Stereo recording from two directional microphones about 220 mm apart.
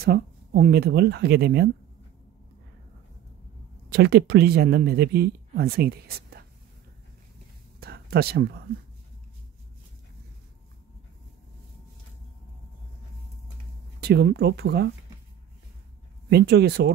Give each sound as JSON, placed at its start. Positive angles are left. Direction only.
{"t": 0.0, "sound": "speech", "side_deg": -45}
{"t": 3.9, "sound": "speech", "side_deg": -50}
{"t": 7.8, "sound": "a sound", "side_deg": -45}
{"t": 14.0, "sound": "speech", "side_deg": -45}
{"t": 16.3, "sound": "speech", "side_deg": -50}